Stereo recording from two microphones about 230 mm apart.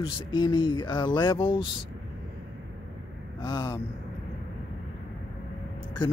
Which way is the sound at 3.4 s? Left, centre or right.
Centre.